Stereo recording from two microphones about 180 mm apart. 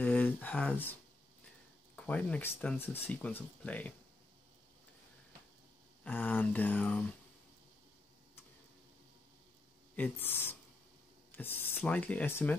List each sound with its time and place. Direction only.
0.0 s a sound: 10° left (ahead or behind)
2.0 s speech: 5° left (ahead or behind)
6.0 s speech: 10° left (ahead or behind)
9.9 s speech: 10° left (ahead or behind)